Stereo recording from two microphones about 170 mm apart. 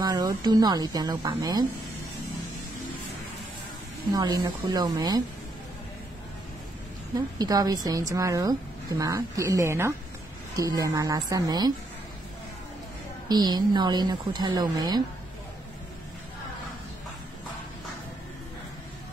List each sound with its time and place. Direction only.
0.0 s speech: 25° right (ahead or behind)
4.1 s speech: 20° right (ahead or behind)
7.3 s a woman's voice: 20° right (ahead or behind)
13.3 s speech: 25° right (ahead or behind)